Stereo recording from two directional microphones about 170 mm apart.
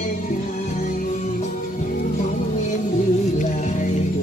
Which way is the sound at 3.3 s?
45° left (ahead or behind).